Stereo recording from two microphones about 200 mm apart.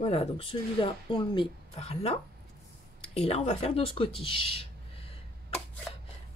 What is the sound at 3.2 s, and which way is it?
Speech, 35° left (ahead or behind).